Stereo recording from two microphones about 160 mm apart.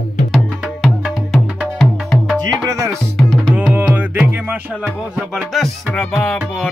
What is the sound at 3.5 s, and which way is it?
Music, 10° right (ahead or behind).